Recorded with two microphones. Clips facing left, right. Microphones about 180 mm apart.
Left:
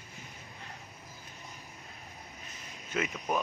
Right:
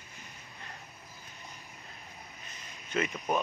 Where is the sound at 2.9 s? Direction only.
5° left (ahead or behind).